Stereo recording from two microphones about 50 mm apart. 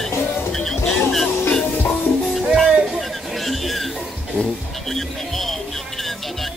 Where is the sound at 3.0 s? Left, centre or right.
Centre.